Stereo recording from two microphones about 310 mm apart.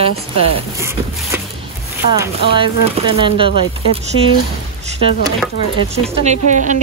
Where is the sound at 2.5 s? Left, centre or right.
Centre.